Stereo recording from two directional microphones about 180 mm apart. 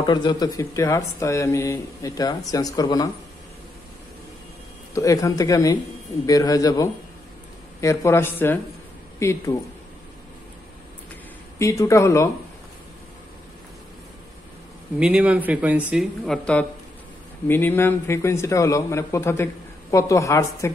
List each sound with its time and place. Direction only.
0.0 s speech: 25° left (ahead or behind)
4.9 s speech: 15° left (ahead or behind)
11.5 s speech: 15° left (ahead or behind)
15.0 s speech: 5° right (ahead or behind); by 20.7 s 15° left (ahead or behind)